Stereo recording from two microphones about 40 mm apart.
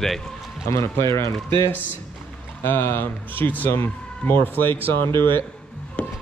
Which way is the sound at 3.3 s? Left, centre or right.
Left.